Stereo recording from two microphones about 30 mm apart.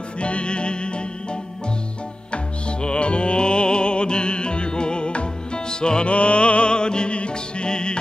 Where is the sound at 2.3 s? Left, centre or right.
Left.